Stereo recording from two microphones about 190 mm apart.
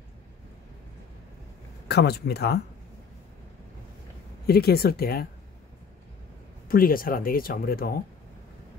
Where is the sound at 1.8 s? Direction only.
60° left (ahead or behind).